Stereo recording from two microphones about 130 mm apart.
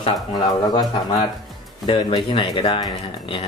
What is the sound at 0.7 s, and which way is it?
Speech, 35° left (ahead or behind).